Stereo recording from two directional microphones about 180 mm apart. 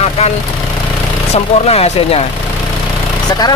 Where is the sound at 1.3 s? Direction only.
35° left (ahead or behind).